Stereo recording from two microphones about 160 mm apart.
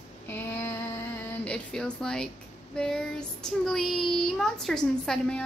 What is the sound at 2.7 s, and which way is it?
Child singing, 5° left (ahead or behind).